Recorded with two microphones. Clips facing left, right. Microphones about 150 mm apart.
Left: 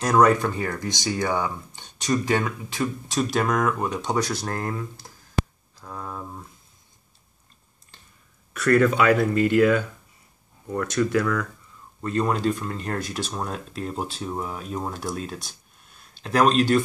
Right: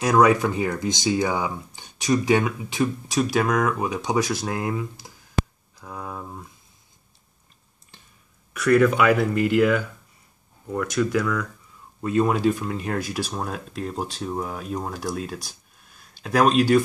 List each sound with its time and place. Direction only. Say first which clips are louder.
0.0 s speech: right 1 dB; 5° right (ahead or behind)
3.2 s speech: right 2 dB; 5° right (ahead or behind)
8.5 s speech: right 1 dB; 5° right (ahead or behind)